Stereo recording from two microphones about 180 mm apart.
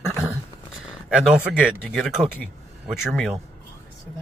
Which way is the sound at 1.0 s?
5° right (ahead or behind).